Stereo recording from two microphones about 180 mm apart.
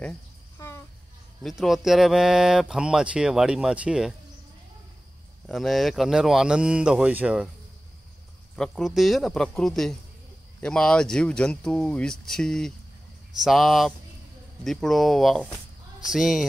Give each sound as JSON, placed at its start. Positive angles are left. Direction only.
{"t": 0.6, "sound": "a sound", "side_deg": 15}
{"t": 1.4, "sound": "speech", "side_deg": 0}
{"t": 5.5, "sound": "speech", "side_deg": 0}
{"t": 8.5, "sound": "speech", "side_deg": 0}